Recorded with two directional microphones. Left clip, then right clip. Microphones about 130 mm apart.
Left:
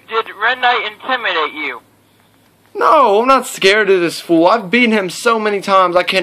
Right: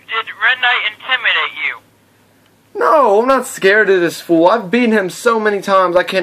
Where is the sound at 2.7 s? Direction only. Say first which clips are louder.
Even; 10° right (ahead or behind).